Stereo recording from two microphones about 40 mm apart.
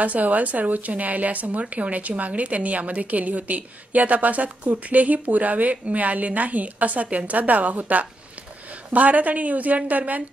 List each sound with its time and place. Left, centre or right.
0.0 s a woman's voice: right